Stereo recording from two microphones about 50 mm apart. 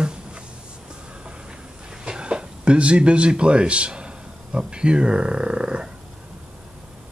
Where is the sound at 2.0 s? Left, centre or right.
Centre.